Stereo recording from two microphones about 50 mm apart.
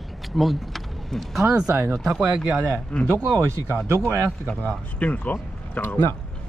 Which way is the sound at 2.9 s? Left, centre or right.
Left.